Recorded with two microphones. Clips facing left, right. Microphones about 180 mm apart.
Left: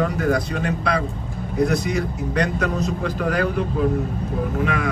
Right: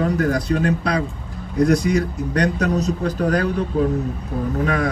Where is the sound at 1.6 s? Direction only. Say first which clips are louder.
Right 4 dB; 35° right (ahead or behind).